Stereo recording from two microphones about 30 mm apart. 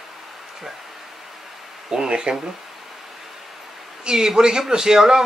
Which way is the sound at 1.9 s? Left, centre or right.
Right.